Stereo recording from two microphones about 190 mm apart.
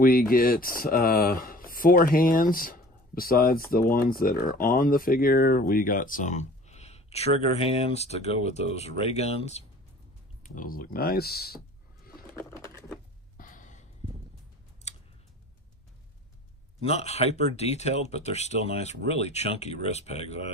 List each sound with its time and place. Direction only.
0.0 s speech: 50° left (ahead or behind)
12.4 s typing: 15° left (ahead or behind)
13.4 s sigh: 45° left (ahead or behind)
14.9 s tick-tock: 35° left (ahead or behind)
16.8 s speech: 35° left (ahead or behind)